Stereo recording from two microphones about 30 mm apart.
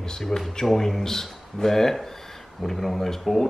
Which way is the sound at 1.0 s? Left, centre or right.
Centre.